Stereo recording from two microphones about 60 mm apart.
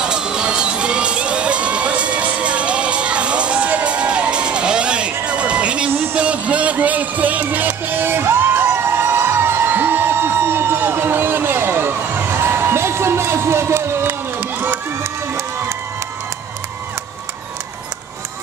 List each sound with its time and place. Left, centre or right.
0.0 s crowd: centre
5.2 s music: centre; by 14.8 s right